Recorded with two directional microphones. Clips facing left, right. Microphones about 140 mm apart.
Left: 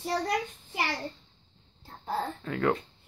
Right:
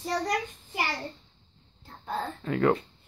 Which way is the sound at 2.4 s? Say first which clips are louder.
Right 5 dB; 5° right (ahead or behind).